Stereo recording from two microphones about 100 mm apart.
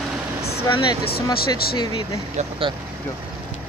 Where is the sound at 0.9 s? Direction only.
45° left (ahead or behind).